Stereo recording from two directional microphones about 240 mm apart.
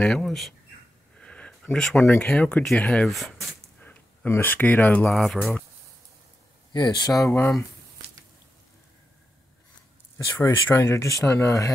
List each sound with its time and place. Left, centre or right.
0.0 s speech: centre
6.7 s speech: centre
10.1 s speech: centre